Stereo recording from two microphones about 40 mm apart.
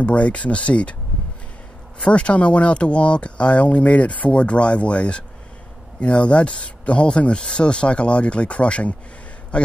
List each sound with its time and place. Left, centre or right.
0.0 s speech: left
2.0 s speech: left